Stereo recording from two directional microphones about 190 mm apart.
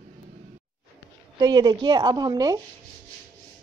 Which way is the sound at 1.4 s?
20° right (ahead or behind).